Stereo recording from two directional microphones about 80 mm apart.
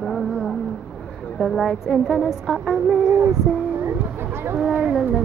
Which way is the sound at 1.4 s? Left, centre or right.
Centre.